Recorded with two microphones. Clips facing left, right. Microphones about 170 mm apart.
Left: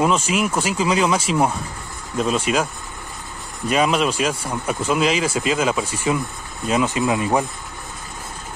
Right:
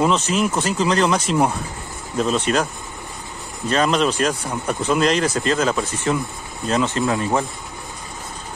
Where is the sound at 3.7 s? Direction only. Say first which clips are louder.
Even; 5° left (ahead or behind).